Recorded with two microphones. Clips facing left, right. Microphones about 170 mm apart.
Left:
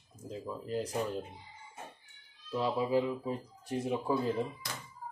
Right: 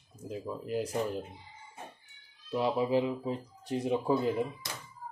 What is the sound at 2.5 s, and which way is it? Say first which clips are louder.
Speech: right 2 dB; 15° right (ahead or behind).